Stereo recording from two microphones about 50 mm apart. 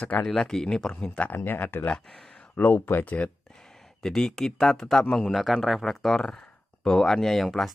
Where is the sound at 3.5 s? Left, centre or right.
Centre.